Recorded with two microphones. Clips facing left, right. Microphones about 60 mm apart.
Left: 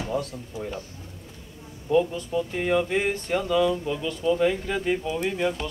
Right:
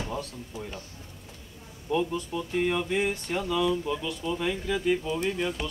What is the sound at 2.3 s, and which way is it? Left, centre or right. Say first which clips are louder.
Speech: left 5 dB; left.